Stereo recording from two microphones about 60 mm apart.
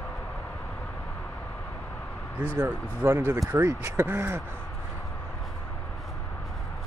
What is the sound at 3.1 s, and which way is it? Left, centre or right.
Speech, right.